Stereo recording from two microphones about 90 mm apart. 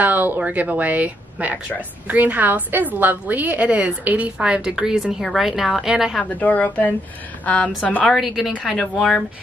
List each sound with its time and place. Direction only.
0.0 s a woman's voice: 20° right (ahead or behind)
6.1 s a woman's voice: 15° left (ahead or behind)
8.1 s a woman's voice: centre (ahead or behind)
8.5 s a woman's voice: 10° left (ahead or behind)